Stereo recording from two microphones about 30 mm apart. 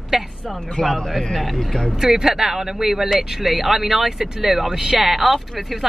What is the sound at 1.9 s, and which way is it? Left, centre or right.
Speech, centre.